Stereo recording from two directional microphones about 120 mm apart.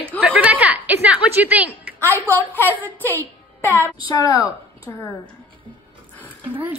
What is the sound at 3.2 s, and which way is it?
Music, 20° right (ahead or behind).